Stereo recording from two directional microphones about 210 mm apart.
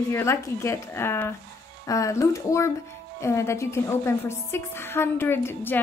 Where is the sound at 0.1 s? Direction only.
10° left (ahead or behind).